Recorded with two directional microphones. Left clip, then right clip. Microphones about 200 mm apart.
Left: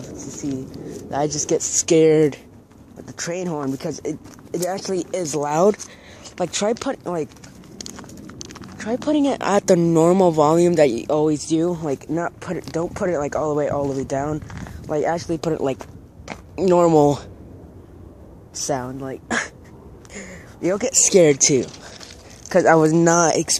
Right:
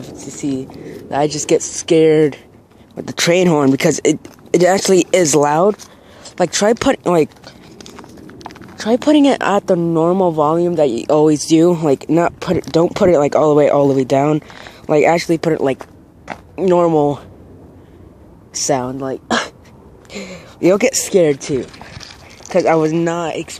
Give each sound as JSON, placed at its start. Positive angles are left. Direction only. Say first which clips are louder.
{"t": 0.4, "sound": "speech", "louder": "right 7 dB", "side_deg": -30}
{"t": 1.5, "sound": "speech", "louder": "right 7 dB", "side_deg": -20}
{"t": 1.9, "sound": "speech", "louder": "right 4 dB", "side_deg": -5}
{"t": 3.2, "sound": "speech", "louder": "right 13 dB", "side_deg": -50}
{"t": 6.3, "sound": "speech", "louder": "right 8 dB", "side_deg": -25}
{"t": 6.9, "sound": "speech", "louder": "right 11 dB", "side_deg": -40}
{"t": 7.8, "sound": "clip-clop", "louder": "even", "side_deg": -10}
{"t": 8.7, "sound": "speech", "louder": "right 8 dB", "side_deg": -35}
{"t": 9.5, "sound": "speech", "louder": "right 2 dB", "side_deg": 0}
{"t": 11.0, "sound": "speech", "louder": "right 7 dB", "side_deg": -20}
{"t": 16.5, "sound": "speech", "louder": "right 2 dB", "side_deg": -5}
{"t": 18.6, "sound": "speech", "louder": "right 7 dB", "side_deg": -25}
{"t": 20.2, "sound": "a sound", "louder": "right 9 dB", "side_deg": -30}
{"t": 21.0, "sound": "speech", "louder": "even", "side_deg": 0}